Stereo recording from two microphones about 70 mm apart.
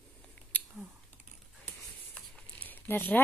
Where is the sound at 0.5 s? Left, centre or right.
Left.